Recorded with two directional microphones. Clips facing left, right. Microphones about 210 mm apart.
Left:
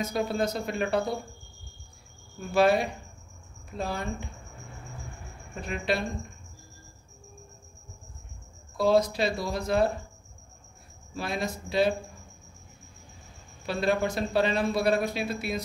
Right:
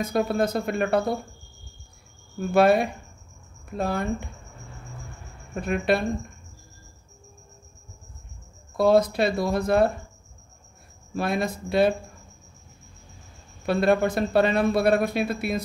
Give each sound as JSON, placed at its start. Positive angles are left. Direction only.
{"t": 0.0, "sound": "speech", "side_deg": -55}
{"t": 2.5, "sound": "speech", "side_deg": -55}
{"t": 5.6, "sound": "speech", "side_deg": -55}
{"t": 8.7, "sound": "speech", "side_deg": -55}
{"t": 11.1, "sound": "speech", "side_deg": -55}
{"t": 13.7, "sound": "speech", "side_deg": -55}